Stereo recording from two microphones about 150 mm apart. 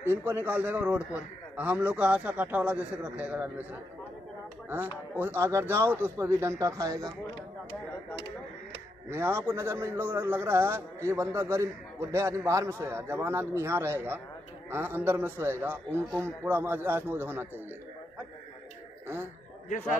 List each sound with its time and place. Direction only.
0.0 s a man's voice: 15° right (ahead or behind)
4.6 s a man's voice: 10° right (ahead or behind)
9.1 s a man's voice: 15° right (ahead or behind)